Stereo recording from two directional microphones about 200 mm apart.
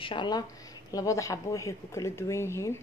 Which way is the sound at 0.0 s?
25° left (ahead or behind).